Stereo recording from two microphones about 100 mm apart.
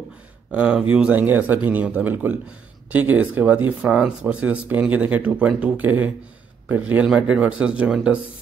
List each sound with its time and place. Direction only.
0.5 s speech: 10° right (ahead or behind)